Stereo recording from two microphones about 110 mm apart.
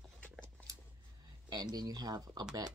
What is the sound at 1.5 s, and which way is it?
Speech, 35° right (ahead or behind).